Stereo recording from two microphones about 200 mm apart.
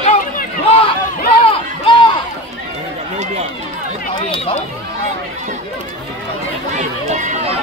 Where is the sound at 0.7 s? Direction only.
30° left (ahead or behind).